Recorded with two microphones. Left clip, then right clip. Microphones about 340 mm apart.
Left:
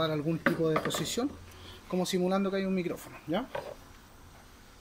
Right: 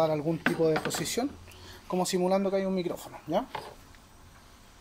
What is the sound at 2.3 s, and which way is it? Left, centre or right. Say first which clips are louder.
Speech: right 4 dB; right.